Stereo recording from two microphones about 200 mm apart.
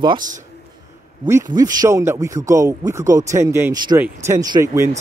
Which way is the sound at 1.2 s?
15° right (ahead or behind).